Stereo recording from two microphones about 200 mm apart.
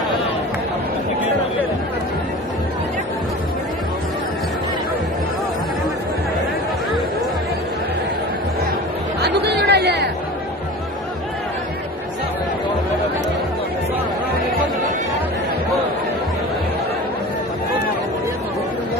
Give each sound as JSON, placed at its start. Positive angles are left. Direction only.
{"t": 9.2, "sound": "chatter", "side_deg": -55}